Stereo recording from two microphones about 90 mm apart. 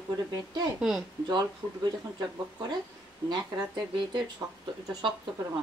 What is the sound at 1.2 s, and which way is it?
Speech, 50° right (ahead or behind).